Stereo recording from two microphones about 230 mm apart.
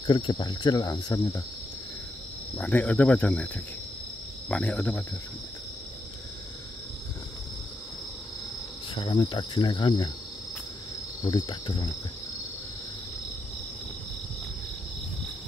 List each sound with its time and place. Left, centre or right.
0.0 s cricket: centre
2.5 s insect: centre
8.9 s cricket: left
11.2 s cricket: centre